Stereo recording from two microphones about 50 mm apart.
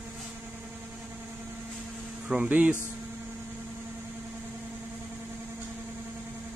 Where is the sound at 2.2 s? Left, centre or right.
Right.